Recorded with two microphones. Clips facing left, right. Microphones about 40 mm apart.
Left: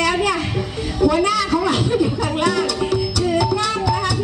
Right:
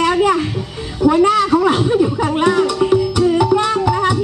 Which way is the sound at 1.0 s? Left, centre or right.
Right.